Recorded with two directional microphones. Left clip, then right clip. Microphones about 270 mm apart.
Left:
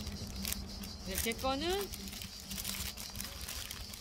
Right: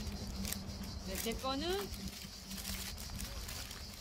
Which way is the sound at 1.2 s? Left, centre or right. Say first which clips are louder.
Left 4 dB; left.